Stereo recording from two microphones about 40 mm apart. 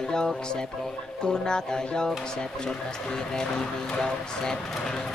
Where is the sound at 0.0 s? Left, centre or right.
Centre.